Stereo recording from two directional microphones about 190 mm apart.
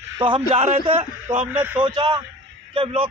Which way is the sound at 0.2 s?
30° right (ahead or behind).